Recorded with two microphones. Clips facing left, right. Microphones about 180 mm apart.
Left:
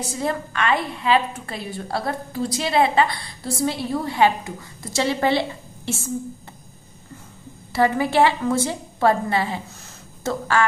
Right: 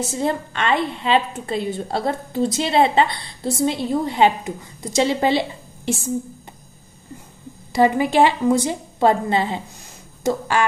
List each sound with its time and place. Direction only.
0.0 s a woman's voice: 25° right (ahead or behind)
7.7 s a woman's voice: 15° right (ahead or behind)